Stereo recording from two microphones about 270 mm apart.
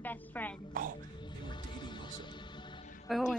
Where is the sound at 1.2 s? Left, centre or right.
Centre.